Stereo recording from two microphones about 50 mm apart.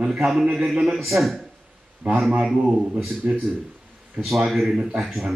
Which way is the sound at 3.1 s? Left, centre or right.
Centre.